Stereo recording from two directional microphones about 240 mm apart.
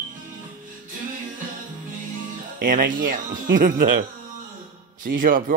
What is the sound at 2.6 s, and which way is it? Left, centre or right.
Speech, right.